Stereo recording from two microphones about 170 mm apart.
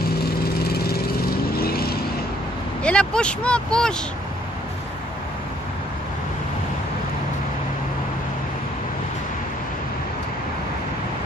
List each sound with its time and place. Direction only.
0.2 s vehicle: 65° left (ahead or behind)
2.8 s speech: 5° left (ahead or behind)